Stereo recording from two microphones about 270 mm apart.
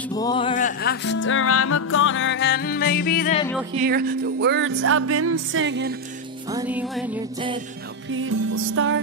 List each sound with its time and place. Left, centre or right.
0.1 s music: centre; by 3.3 s left
3.7 s speech: right
6.5 s music: centre
8.1 s music: right